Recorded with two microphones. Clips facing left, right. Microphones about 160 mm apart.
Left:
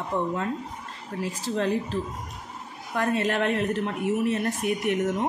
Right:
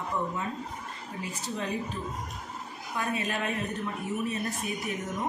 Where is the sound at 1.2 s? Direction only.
90° left.